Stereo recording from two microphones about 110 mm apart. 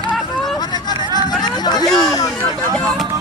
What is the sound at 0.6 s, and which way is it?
Hubbub, 40° left (ahead or behind).